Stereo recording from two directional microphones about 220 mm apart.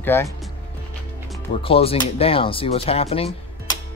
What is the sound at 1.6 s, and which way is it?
Speech, 25° left (ahead or behind).